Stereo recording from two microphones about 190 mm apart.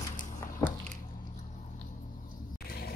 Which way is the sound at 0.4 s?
10° left (ahead or behind).